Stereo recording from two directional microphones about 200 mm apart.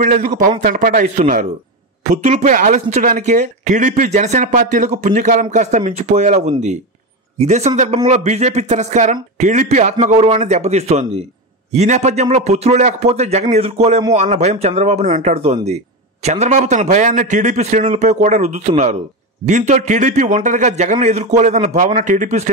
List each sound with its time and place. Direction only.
0.0 s speech: 40° right (ahead or behind)